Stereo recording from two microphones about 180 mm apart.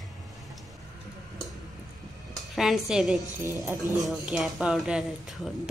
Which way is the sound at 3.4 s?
15° right (ahead or behind).